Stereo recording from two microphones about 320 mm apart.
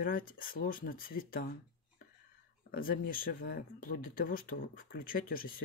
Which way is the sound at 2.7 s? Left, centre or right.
Left.